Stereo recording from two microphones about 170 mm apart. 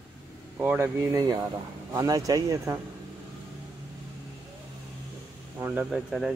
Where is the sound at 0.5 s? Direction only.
10° right (ahead or behind).